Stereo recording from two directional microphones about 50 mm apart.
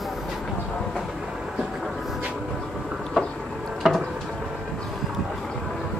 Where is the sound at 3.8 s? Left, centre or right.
Centre.